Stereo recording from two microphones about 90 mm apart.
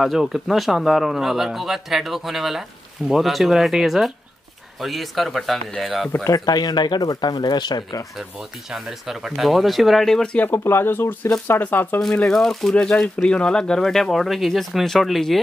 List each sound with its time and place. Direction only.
0.0 s speech: centre (ahead or behind)
6.2 s speech: 45° left (ahead or behind)
8.2 s speech: 5° right (ahead or behind)
10.4 s speech: 25° left (ahead or behind)
12.1 s speech: 10° left (ahead or behind)